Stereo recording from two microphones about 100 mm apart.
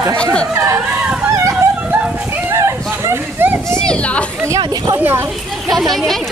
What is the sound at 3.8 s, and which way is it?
Speech, 10° left (ahead or behind).